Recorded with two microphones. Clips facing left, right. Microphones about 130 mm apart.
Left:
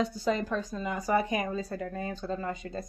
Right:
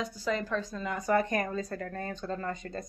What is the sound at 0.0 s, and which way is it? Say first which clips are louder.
Speech: left 3 dB; 20° left (ahead or behind).